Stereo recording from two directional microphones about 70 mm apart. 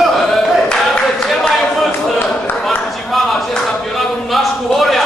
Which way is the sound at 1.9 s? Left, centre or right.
Left.